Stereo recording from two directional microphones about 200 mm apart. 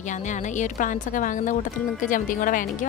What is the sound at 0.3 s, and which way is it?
A woman's voice, 40° left (ahead or behind).